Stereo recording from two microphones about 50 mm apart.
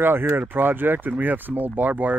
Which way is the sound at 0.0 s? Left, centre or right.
Right.